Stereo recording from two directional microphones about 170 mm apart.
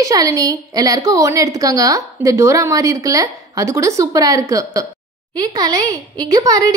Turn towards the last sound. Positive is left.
turn(degrees=-20)  # may be behind; listen again after turning